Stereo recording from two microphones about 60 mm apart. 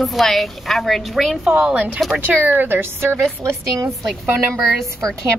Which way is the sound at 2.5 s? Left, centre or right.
Right.